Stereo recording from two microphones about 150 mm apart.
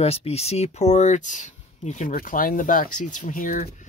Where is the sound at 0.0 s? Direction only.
40° left (ahead or behind).